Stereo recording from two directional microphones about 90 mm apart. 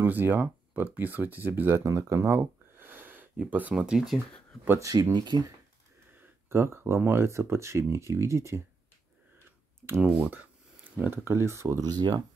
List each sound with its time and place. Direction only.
0.0 s speech: 20° right (ahead or behind)
5.1 s speech: 55° right (ahead or behind)
6.5 s speech: 25° right (ahead or behind)
9.8 s speech: 25° right (ahead or behind)
11.8 s speech: 50° right (ahead or behind)